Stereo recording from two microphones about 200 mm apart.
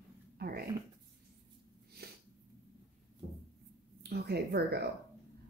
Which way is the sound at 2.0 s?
50° right (ahead or behind).